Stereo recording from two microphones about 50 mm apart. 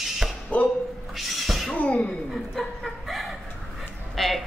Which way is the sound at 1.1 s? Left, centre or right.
Centre.